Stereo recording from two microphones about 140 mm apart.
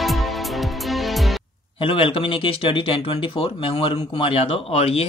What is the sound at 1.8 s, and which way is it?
Speech, 40° left (ahead or behind).